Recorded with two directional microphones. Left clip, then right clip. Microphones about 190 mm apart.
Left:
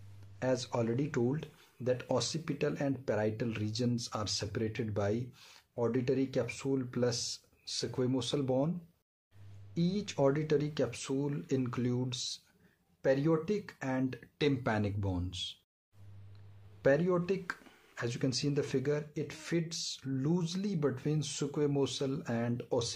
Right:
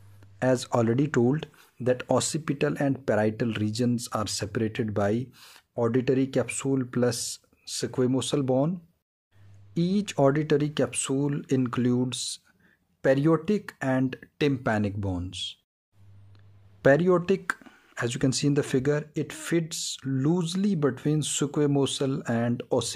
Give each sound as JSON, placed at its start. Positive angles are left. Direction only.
{"t": 0.4, "sound": "speech", "side_deg": -45}
{"t": 9.8, "sound": "speech", "side_deg": -45}
{"t": 16.8, "sound": "speech", "side_deg": -45}